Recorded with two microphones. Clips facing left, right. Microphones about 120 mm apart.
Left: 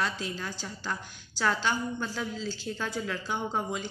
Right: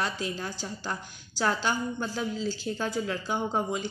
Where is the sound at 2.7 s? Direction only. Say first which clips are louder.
Right 3 dB; 30° right (ahead or behind).